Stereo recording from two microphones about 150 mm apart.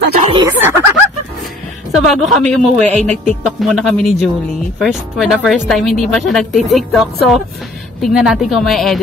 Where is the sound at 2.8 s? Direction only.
50° right (ahead or behind).